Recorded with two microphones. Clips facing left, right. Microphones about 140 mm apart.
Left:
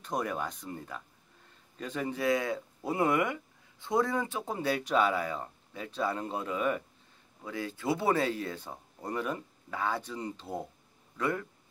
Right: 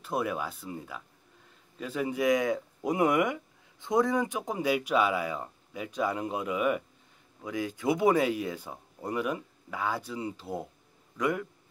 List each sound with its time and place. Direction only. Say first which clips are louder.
0.0 s speech: right 2 dB; 5° right (ahead or behind)